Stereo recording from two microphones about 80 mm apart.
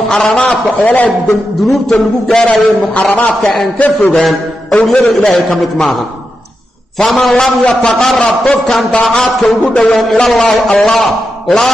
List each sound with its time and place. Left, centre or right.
0.2 s a man's voice: centre
1.7 s a man's voice: centre
2.9 s a man's voice: left
4.1 s a man's voice: centre
7.0 s a man's voice: centre